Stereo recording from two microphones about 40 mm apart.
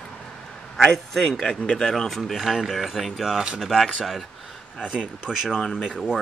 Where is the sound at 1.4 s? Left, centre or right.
Left.